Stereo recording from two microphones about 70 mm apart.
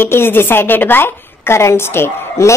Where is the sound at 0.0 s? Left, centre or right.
Left.